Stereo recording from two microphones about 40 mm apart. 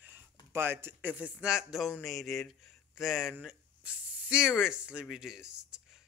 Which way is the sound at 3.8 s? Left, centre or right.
Right.